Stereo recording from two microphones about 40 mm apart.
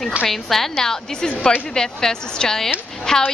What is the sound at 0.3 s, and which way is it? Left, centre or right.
A woman's voice, centre.